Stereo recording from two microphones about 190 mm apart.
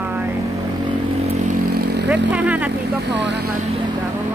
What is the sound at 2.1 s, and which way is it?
Speech, 10° right (ahead or behind).